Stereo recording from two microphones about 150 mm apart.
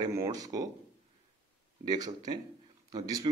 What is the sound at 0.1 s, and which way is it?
Speech, 20° right (ahead or behind).